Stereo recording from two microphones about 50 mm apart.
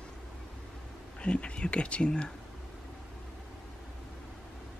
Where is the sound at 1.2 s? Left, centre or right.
Left.